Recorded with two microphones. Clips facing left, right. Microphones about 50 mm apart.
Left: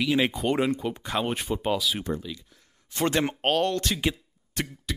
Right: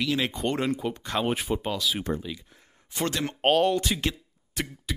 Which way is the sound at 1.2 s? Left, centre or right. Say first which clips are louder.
Right 2 dB; centre.